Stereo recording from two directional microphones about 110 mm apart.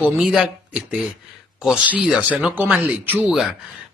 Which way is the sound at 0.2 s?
5° right (ahead or behind).